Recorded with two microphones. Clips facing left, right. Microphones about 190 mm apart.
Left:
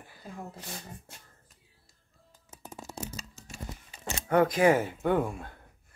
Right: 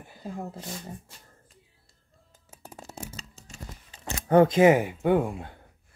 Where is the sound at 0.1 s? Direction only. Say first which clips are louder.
Right 7 dB; 30° right (ahead or behind).